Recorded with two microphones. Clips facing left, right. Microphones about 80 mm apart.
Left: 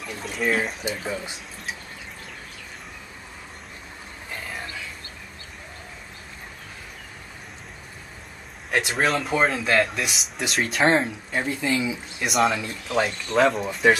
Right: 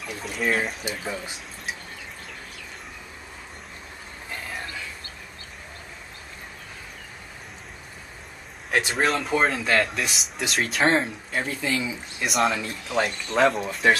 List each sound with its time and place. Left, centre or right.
0.0 s a man's voice: centre
8.6 s a man's voice: centre
11.4 s speech: centre
12.2 s a man's voice: centre